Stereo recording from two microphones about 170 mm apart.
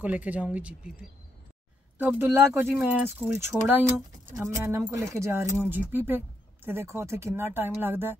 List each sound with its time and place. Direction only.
0.0 s speech: 10° right (ahead or behind)
2.0 s speech: 10° right (ahead or behind)